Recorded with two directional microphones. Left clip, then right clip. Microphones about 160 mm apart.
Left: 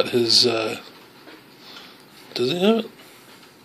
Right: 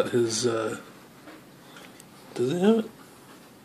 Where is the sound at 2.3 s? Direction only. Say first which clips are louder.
Left 4 dB; 5° left (ahead or behind).